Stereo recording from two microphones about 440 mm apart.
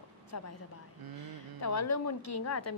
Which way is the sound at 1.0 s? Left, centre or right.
Right.